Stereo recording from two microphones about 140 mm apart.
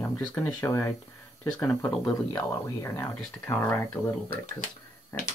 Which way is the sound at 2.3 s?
20° left (ahead or behind).